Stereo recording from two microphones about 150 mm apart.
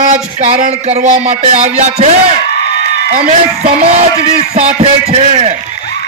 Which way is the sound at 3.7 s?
50° right (ahead or behind).